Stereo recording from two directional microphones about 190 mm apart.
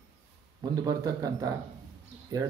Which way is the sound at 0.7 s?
20° right (ahead or behind).